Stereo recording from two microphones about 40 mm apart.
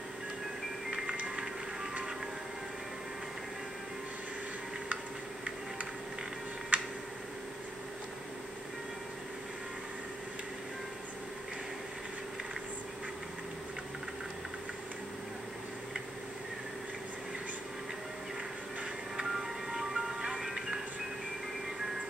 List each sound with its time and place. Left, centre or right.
0.8 s music: centre
6.7 s tick-tock: right
19.2 s music: centre